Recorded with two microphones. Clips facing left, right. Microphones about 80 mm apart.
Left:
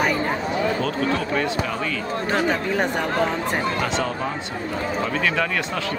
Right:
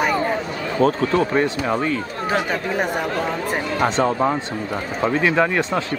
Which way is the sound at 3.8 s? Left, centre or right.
Right.